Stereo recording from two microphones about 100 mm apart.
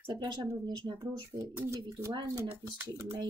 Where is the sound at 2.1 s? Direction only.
45° right (ahead or behind).